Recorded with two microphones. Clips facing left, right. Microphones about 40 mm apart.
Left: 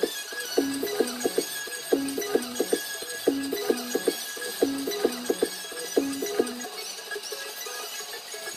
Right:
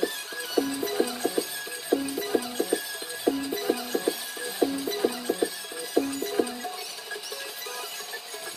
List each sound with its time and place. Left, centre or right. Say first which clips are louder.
0.6 s music: even; right